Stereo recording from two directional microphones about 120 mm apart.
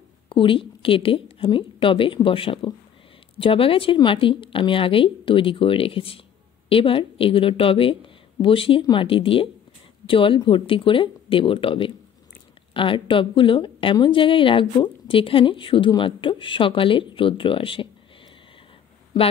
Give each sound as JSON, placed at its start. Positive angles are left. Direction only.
{"t": 0.3, "sound": "a woman's voice", "side_deg": 45}